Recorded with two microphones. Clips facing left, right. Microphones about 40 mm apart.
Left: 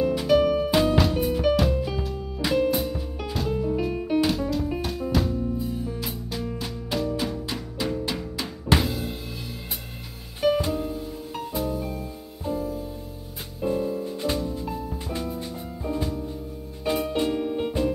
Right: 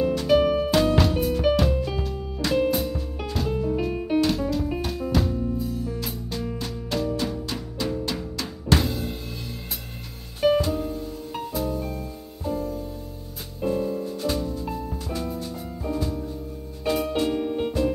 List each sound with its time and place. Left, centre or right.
0.3 s music: centre
0.7 s music: centre
5.6 s music: centre
6.6 s music: centre
10.7 s music: centre
14.0 s music: centre
14.6 s music: centre
15.8 s music: centre
16.9 s music: centre